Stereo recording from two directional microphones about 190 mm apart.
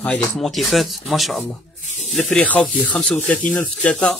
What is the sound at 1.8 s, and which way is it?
Snake, 40° left (ahead or behind).